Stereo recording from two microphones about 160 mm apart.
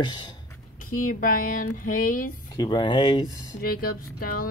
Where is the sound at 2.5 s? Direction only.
25° left (ahead or behind).